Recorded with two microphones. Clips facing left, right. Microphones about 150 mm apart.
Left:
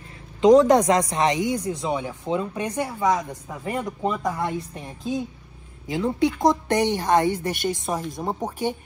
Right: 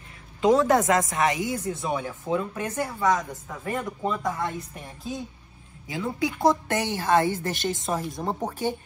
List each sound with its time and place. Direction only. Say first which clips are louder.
0.4 s a woman's voice: left 5 dB; 20° left (ahead or behind)